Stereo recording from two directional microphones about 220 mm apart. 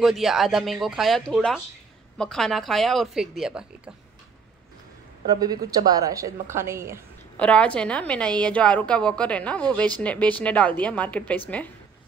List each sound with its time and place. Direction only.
0.0 s a woman's voice: centre (ahead or behind)
5.2 s a woman's voice: 15° right (ahead or behind)
7.3 s a woman's voice: 5° left (ahead or behind)